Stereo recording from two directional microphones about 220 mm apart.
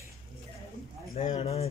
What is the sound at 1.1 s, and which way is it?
Speech, 30° left (ahead or behind).